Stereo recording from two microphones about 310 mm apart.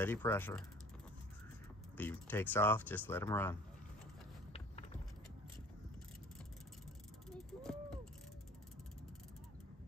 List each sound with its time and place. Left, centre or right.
0.0 s speech: centre
2.0 s speech: centre
4.5 s vehicle: centre
7.2 s a sound: centre